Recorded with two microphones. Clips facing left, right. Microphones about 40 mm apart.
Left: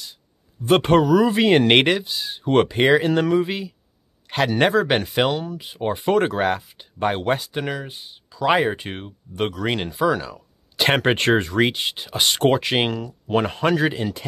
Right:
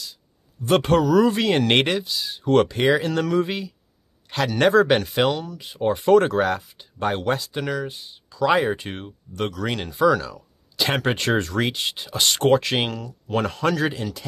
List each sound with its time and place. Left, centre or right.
0.6 s speech: left
1.1 s speech: centre
1.4 s speech: left
3.3 s speech: centre
4.3 s speech: centre
10.8 s speech: left
11.3 s speech: left